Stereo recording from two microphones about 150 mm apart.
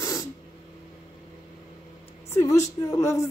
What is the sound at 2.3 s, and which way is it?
A woman's voice, 20° left (ahead or behind).